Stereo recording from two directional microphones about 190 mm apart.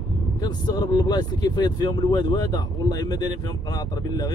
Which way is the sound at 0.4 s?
20° left (ahead or behind).